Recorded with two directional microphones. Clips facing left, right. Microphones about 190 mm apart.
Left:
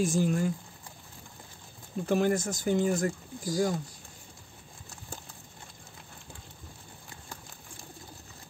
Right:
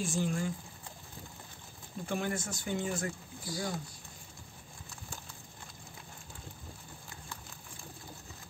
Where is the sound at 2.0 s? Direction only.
40° left (ahead or behind).